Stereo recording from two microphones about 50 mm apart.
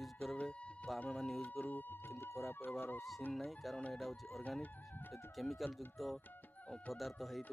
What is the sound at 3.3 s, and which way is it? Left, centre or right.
Speech, centre.